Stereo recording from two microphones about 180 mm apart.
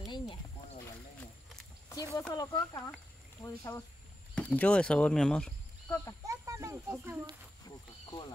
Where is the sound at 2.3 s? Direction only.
20° left (ahead or behind).